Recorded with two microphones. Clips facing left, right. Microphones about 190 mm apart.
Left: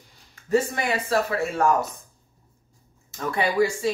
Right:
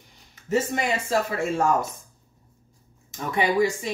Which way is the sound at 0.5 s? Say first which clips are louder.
Left 2 dB; 20° right (ahead or behind).